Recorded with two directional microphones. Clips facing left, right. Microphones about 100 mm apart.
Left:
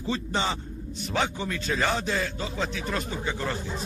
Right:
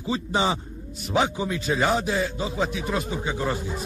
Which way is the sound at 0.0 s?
10° right (ahead or behind).